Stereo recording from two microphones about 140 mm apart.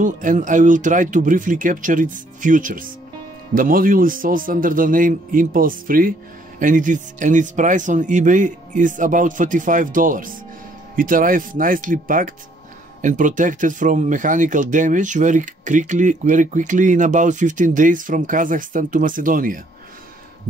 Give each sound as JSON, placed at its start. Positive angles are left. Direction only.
{"t": 0.0, "sound": "a man's voice", "side_deg": -70}
{"t": 6.6, "sound": "speech", "side_deg": -65}